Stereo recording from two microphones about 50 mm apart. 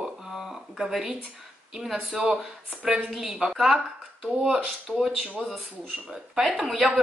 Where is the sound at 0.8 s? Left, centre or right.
Centre.